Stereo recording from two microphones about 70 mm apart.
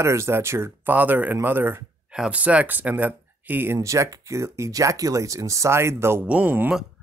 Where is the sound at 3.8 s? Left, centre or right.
Right.